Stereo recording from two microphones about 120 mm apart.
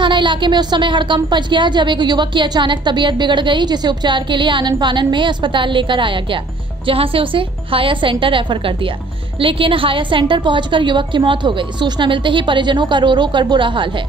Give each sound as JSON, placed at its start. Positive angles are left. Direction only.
{"t": 0.0, "sound": "a woman's voice", "side_deg": -40}